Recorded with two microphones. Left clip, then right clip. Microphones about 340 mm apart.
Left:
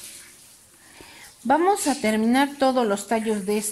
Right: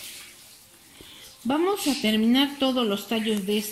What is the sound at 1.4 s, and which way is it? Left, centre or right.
Speech, left.